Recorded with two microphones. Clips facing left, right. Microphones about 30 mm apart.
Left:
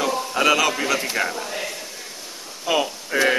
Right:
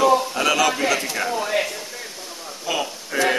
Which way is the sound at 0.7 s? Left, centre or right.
Centre.